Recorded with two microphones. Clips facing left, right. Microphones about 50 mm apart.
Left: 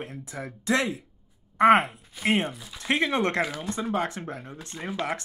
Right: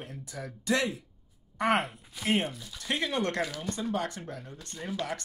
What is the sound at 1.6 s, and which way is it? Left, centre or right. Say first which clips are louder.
Speech: left 9 dB; left.